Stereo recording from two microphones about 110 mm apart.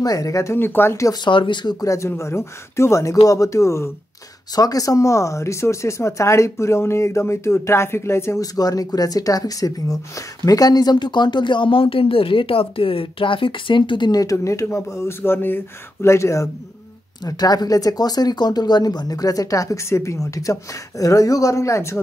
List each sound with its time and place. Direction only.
0.0 s speech: 35° left (ahead or behind)
1.2 s speech: 45° left (ahead or behind)
1.9 s speech: 25° left (ahead or behind)
17.2 s speech: 35° left (ahead or behind)